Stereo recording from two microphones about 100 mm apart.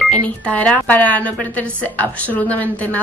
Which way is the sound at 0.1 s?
15° left (ahead or behind).